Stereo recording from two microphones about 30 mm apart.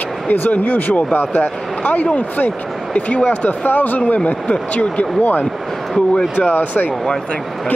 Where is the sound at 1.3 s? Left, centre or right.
Left.